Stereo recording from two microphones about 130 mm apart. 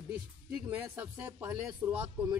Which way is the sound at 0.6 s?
15° right (ahead or behind).